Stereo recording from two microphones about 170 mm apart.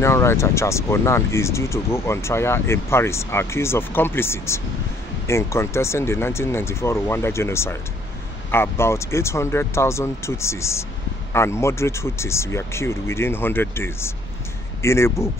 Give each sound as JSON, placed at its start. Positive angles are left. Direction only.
{"t": 0.0, "sound": "speech", "side_deg": 15}